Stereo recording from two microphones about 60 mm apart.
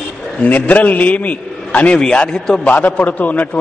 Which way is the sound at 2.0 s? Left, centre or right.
Centre.